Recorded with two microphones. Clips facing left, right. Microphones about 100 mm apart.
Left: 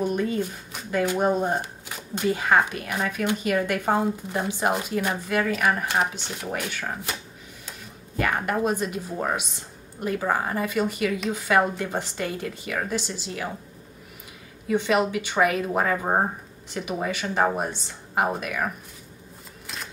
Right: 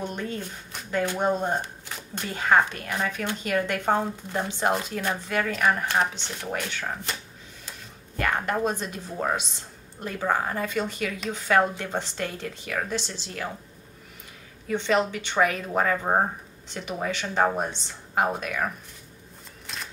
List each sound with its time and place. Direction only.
0.0 s speech: 10° left (ahead or behind)
8.2 s speech: 5° left (ahead or behind)
14.7 s speech: 10° left (ahead or behind)